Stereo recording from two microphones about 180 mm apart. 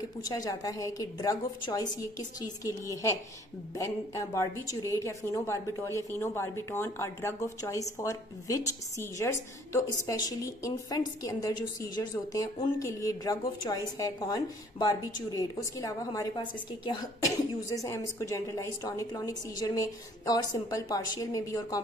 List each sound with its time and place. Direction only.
0.2 s a woman's voice: 20° left (ahead or behind)